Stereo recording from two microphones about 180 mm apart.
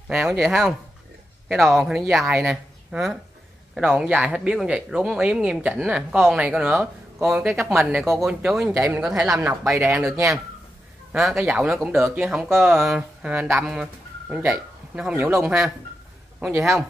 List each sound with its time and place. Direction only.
0.1 s speech: 5° right (ahead or behind)
9.0 s speech: 5° right (ahead or behind)
11.1 s speech: centre (ahead or behind)